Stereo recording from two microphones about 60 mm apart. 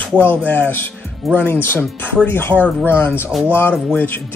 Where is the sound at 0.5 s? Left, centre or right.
Left.